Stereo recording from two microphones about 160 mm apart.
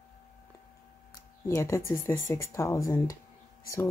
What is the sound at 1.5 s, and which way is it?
Speech, 20° left (ahead or behind).